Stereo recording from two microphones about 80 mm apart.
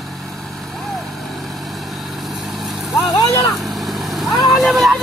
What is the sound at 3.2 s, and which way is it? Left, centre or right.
Speech, left.